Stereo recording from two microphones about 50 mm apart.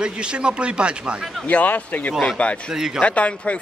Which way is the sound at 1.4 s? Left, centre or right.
Left.